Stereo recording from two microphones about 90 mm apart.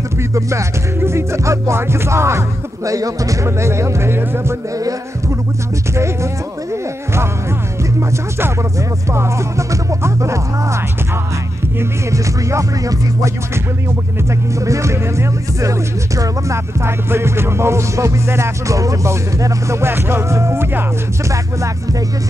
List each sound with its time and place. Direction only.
0.3 s music: 35° right (ahead or behind)
9.1 s music: 30° right (ahead or behind)
12.1 s music: 35° right (ahead or behind)
14.7 s music: 35° right (ahead or behind)